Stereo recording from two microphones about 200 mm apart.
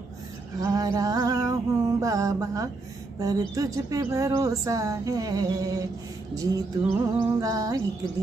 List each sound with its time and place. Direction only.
0.6 s speech: 20° right (ahead or behind)